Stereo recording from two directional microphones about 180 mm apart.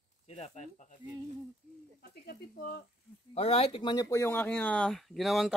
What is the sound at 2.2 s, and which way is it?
Speech, 55° left (ahead or behind).